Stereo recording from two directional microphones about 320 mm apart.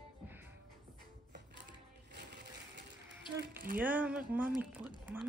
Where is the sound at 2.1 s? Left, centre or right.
Right.